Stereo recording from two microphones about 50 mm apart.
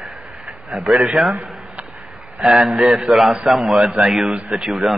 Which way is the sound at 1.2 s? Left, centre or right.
Centre.